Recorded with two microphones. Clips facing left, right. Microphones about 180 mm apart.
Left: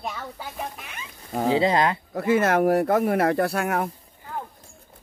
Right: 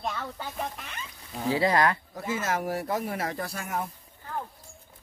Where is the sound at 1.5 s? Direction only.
20° left (ahead or behind).